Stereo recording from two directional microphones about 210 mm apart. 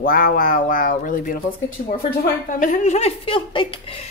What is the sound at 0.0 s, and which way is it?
A woman's voice, 40° left (ahead or behind).